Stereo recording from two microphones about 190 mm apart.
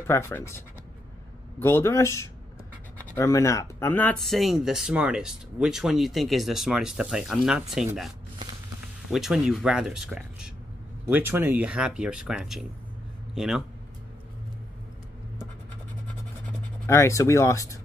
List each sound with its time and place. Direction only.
0.0 s speech: 10° left (ahead or behind)
9.1 s speech: centre (ahead or behind)
16.8 s speech: 15° left (ahead or behind)